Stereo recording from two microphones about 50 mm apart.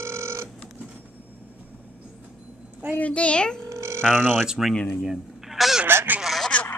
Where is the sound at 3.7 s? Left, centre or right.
Right.